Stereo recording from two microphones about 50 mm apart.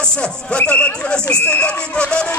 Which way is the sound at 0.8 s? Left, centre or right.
Left.